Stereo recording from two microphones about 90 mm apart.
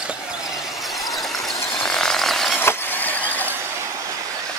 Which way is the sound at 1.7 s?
5° left (ahead or behind).